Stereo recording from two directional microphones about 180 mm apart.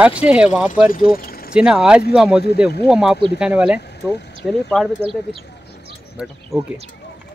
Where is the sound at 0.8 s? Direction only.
50° left (ahead or behind).